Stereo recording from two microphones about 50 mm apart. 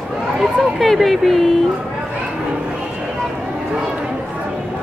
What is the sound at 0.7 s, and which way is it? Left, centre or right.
Speech, centre.